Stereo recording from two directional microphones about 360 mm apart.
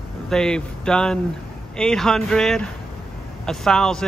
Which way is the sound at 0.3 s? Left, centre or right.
Centre.